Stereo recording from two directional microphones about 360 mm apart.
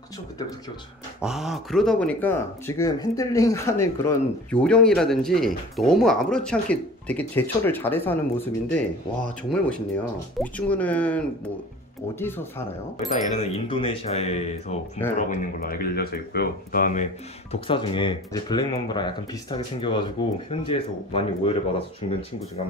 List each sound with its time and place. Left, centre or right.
1.2 s speech: centre